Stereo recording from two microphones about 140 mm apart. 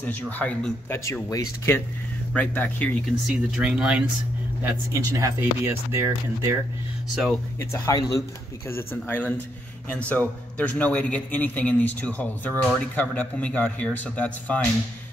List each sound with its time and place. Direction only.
0.0 s a man's voice: 10° left (ahead or behind)
0.9 s a man's voice: 20° left (ahead or behind)
3.3 s speech: 5° right (ahead or behind)
4.9 s speech: 20° right (ahead or behind)
7.5 s a man's voice: 20° left (ahead or behind)